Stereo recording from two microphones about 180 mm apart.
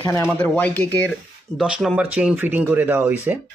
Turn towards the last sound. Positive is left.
turn(degrees=-10)  # may be behind; listen again after turning